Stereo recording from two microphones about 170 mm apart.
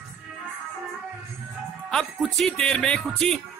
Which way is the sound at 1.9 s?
Centre (ahead or behind).